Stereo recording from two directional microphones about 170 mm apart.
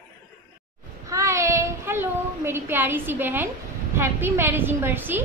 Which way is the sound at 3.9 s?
15° right (ahead or behind).